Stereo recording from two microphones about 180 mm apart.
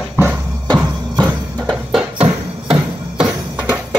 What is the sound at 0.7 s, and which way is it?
Music, 20° right (ahead or behind).